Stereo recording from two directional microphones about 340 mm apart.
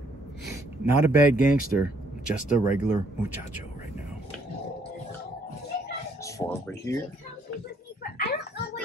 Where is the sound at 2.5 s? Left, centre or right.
Left.